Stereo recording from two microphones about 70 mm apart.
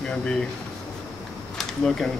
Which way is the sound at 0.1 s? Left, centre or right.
Centre.